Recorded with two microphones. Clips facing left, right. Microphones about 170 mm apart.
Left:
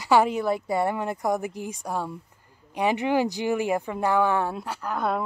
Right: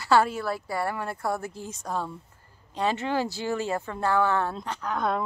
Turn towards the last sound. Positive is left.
turn(degrees=5)  # may be behind; listen again after turning